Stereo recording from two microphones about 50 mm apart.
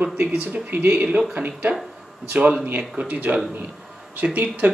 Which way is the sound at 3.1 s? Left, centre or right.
Right.